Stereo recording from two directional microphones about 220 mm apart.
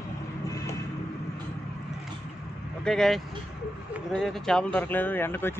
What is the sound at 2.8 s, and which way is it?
Speech, centre (ahead or behind).